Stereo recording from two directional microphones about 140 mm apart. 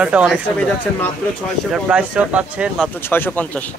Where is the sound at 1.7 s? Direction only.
5° right (ahead or behind).